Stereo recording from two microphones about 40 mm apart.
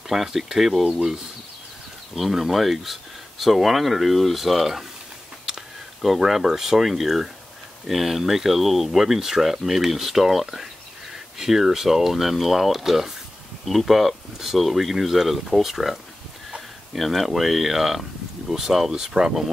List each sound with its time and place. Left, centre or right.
0.1 s speech: centre
2.1 s speech: centre
6.0 s speech: centre
17.0 s speech: centre